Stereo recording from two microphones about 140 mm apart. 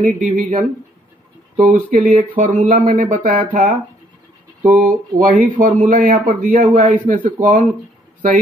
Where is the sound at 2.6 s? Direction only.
65° right (ahead or behind).